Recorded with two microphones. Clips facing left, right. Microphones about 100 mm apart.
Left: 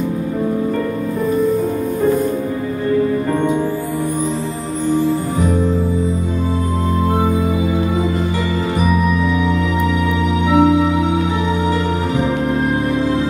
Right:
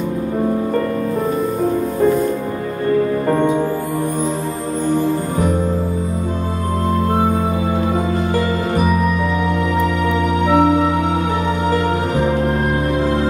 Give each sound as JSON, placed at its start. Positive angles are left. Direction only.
{"t": 10.4, "sound": "music", "side_deg": -45}